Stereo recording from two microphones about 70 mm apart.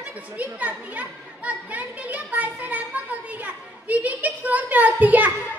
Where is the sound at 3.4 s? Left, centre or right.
Right.